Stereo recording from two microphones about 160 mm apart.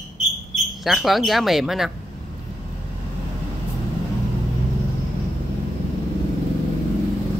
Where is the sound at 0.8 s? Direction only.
Centre (ahead or behind).